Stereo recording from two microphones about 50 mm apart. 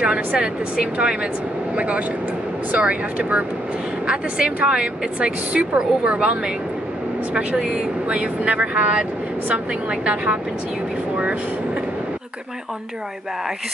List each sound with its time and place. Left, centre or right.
0.3 s a woman's voice: right
7.5 s speech: centre
8.1 s a woman's voice: right